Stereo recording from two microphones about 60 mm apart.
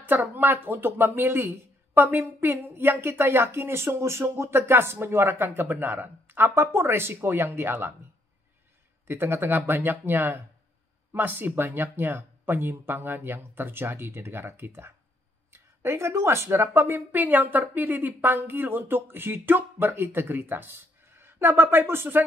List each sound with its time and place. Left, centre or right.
0.0 s a woman's voice: right
9.0 s a woman's voice: right